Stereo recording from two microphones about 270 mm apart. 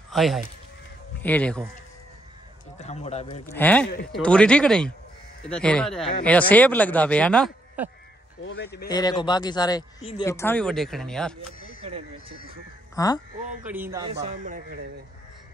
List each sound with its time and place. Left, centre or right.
0.1 s speech: centre
2.8 s speech: left
3.4 s a man's voice: centre
8.4 s a man's voice: left
8.8 s a man's voice: centre
11.8 s speech: right
12.9 s speech: centre
13.7 s a man's voice: centre
14.3 s a man's voice: right